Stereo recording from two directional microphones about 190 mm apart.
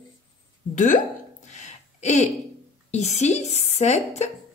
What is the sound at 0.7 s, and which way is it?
Speech, 40° left (ahead or behind).